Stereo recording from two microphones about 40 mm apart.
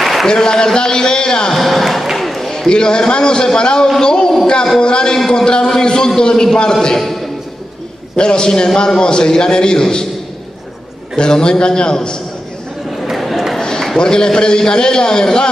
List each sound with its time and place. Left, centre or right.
0.0 s a sound: centre
0.3 s a man's voice: centre
1.5 s basketball bounce: centre
2.7 s a man's voice: left; by 7.2 s centre
8.2 s a man's voice: centre
11.1 s a man's voice: centre
13.0 s a sound: centre
13.6 s run: centre
13.9 s a man's voice: centre